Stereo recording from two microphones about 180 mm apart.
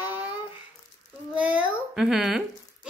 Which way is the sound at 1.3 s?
5° right (ahead or behind).